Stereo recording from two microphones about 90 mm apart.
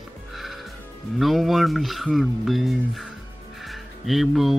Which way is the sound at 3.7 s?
Centre (ahead or behind).